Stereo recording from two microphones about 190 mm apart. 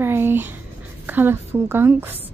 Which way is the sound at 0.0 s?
10° right (ahead or behind).